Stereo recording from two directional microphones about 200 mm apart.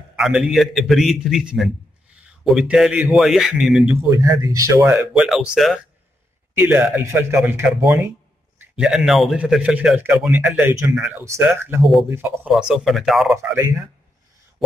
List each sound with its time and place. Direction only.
0.1 s a man's voice: 5° right (ahead or behind)
4.0 s a man's voice: 15° right (ahead or behind); by 13.4 s centre (ahead or behind)
13.4 s speech: 10° right (ahead or behind)